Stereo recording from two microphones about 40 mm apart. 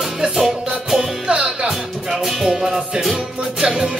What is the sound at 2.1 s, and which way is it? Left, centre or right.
Music, centre.